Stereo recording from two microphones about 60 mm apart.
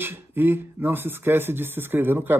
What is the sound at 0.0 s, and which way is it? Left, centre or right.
Speech, right.